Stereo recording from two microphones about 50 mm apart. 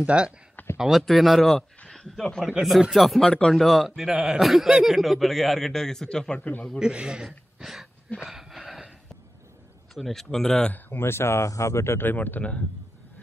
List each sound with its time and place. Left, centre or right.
0.0 s speech: right
0.7 s a man's voice: centre
2.9 s a man's voice: centre
3.3 s speech: centre
3.5 s a man's voice: centre
4.0 s a man's voice: centre
6.3 s a man's voice: left
6.8 s a man's voice: centre
7.6 s speech: centre
8.3 s a sound: centre
9.9 s speech: centre
10.9 s speech: left
12.0 s speech: left